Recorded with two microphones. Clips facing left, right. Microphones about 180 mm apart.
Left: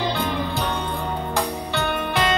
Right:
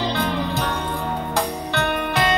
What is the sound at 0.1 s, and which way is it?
Music, 15° left (ahead or behind).